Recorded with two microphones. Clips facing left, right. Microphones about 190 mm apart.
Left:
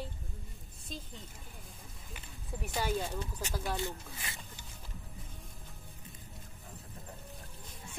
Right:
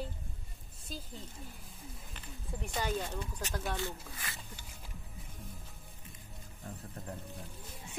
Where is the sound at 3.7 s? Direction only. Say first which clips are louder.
Left 1 dB; 20° left (ahead or behind).